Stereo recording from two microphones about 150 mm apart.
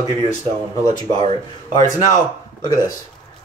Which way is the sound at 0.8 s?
25° left (ahead or behind).